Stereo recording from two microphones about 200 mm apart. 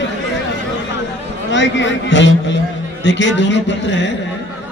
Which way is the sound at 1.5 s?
65° left (ahead or behind).